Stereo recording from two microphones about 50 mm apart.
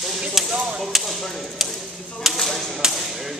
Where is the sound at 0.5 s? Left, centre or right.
Right.